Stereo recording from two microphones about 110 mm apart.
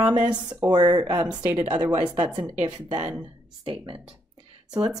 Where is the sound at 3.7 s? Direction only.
55° right (ahead or behind).